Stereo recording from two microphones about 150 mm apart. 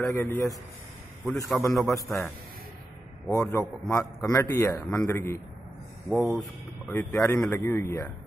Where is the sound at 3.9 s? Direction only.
20° left (ahead or behind).